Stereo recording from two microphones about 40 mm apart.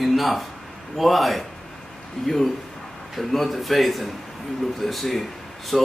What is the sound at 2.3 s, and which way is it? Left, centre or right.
Speech, centre.